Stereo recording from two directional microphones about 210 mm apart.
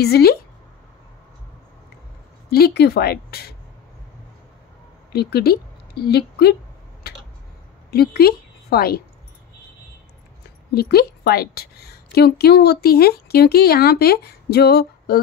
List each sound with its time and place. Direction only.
0.0 s a woman's voice: 50° left (ahead or behind)
2.5 s a woman's voice: 50° left (ahead or behind)
5.1 s a woman's voice: 50° left (ahead or behind)
7.9 s speech: 50° left (ahead or behind)
10.7 s a woman's voice: 50° left (ahead or behind)